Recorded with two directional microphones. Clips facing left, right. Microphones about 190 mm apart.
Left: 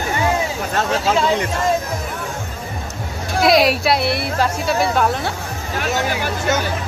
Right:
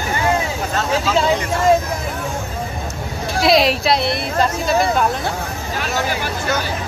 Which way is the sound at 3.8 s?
5° left (ahead or behind).